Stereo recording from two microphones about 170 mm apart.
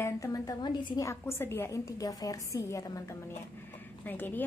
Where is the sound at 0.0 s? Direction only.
20° left (ahead or behind).